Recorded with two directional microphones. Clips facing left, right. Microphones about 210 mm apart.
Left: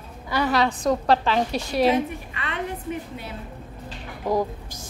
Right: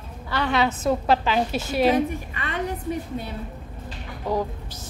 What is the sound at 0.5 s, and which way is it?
A woman's voice, 5° right (ahead or behind).